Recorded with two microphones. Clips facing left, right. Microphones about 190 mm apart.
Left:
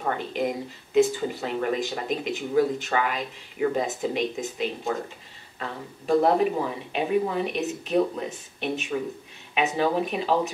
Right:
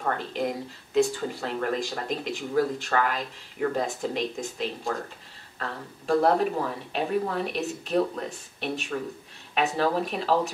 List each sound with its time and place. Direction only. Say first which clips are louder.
0.0 s speech: left 1 dB; 5° left (ahead or behind)